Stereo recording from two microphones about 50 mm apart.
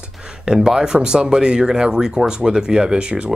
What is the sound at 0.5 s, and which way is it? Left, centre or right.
A man's voice, centre.